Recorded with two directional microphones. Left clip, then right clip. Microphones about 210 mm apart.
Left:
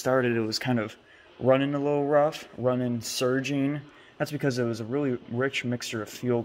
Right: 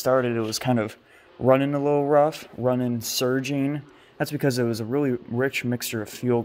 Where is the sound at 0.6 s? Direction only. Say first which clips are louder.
Right 4 dB; 25° right (ahead or behind).